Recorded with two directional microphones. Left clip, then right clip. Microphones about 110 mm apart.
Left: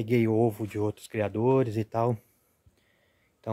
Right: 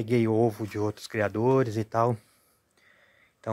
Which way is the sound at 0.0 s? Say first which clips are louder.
Right 1 dB; 20° left (ahead or behind).